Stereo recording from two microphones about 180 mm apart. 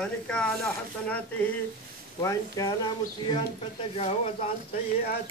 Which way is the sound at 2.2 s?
20° left (ahead or behind).